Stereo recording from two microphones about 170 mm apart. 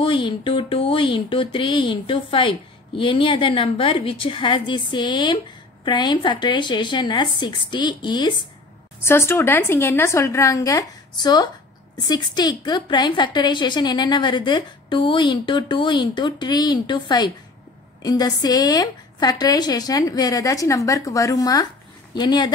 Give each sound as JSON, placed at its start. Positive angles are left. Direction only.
{"t": 0.0, "sound": "a woman's voice", "side_deg": 30}
{"t": 9.0, "sound": "a woman's voice", "side_deg": 15}